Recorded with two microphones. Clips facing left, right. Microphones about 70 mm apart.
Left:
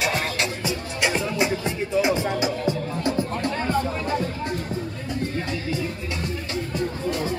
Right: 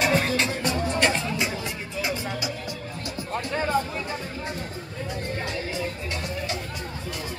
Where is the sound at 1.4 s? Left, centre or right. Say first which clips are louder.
Left 6 dB; left.